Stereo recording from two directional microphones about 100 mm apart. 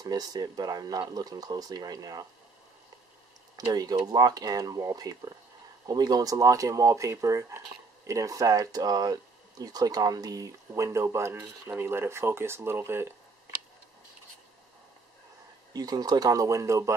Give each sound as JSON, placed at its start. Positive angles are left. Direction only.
{"t": 0.0, "sound": "speech", "side_deg": -40}
{"t": 3.5, "sound": "speech", "side_deg": -40}
{"t": 15.7, "sound": "speech", "side_deg": -40}